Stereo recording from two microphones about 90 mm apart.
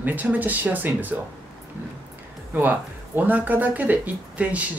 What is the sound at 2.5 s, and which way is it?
Speech, 20° right (ahead or behind).